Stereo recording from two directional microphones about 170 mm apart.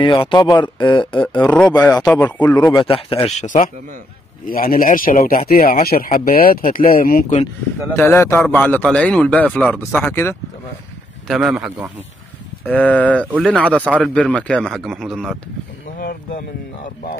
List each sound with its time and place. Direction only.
0.0 s speech: 30° left (ahead or behind)
1.8 s speech: 15° left (ahead or behind)
2.7 s speech: 30° left (ahead or behind)
4.5 s speech: 55° left (ahead or behind)
7.9 s speech: 15° left (ahead or behind)
11.2 s speech: 5° right (ahead or behind)
12.6 s speech: 10° left (ahead or behind)